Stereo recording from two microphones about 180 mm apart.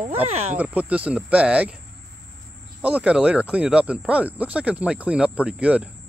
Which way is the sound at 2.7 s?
10° right (ahead or behind).